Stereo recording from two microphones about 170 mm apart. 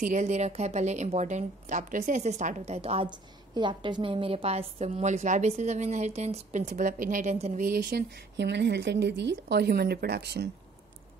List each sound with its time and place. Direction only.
0.0 s speech: 45° right (ahead or behind)
7.6 s speech: 65° right (ahead or behind)